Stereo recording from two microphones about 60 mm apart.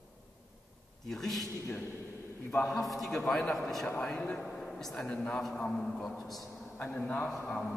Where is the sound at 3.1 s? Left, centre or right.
Centre.